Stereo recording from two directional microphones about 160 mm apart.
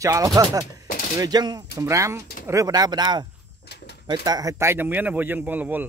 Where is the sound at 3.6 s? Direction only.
90° left.